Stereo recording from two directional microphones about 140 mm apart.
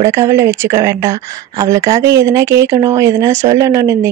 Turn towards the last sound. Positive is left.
turn(degrees=-25)  # may be behind; listen again after turning